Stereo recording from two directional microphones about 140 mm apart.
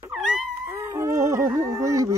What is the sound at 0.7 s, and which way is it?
Howl, 20° right (ahead or behind).